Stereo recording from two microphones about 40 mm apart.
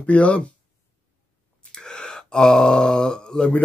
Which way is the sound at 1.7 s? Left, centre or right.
Centre.